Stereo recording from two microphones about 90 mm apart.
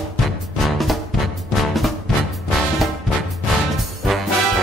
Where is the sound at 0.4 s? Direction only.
Centre (ahead or behind).